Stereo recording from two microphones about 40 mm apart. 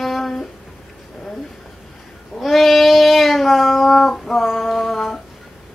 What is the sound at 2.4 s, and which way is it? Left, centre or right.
Child singing, centre.